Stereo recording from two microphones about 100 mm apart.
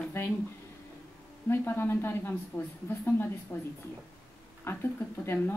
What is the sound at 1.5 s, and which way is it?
A woman's voice, 20° left (ahead or behind).